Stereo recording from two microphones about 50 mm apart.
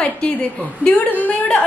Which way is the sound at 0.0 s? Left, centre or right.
Left.